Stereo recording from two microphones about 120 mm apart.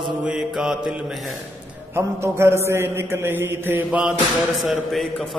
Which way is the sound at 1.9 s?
20° right (ahead or behind).